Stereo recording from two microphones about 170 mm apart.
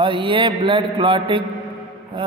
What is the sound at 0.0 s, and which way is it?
A man's voice, 30° right (ahead or behind).